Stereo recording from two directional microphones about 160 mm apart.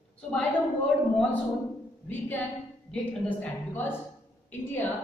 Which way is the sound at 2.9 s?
10° left (ahead or behind).